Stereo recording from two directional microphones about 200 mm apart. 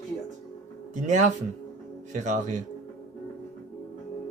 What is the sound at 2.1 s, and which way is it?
Speech, 40° right (ahead or behind).